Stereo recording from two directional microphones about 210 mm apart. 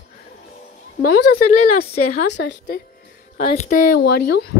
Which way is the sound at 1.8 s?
50° left (ahead or behind).